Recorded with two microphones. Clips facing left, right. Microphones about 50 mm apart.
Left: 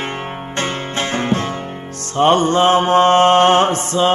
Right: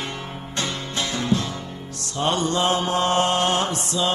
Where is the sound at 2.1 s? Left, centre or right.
Left.